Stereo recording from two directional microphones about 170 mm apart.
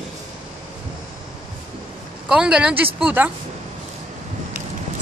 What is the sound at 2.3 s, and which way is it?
A woman's voice, 5° right (ahead or behind).